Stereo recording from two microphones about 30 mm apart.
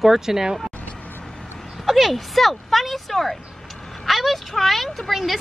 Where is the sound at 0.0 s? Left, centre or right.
Centre.